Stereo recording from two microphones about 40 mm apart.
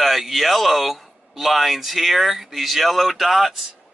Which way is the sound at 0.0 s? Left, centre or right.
Centre.